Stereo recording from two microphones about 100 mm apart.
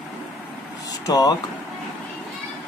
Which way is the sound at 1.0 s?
40° left (ahead or behind).